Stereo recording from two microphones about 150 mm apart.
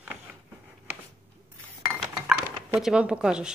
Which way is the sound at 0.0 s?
10° right (ahead or behind).